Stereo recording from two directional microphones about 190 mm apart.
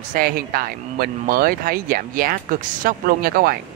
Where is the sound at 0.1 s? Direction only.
50° right (ahead or behind).